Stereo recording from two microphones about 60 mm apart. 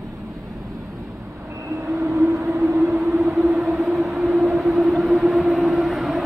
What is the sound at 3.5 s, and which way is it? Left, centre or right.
Vehicle, centre.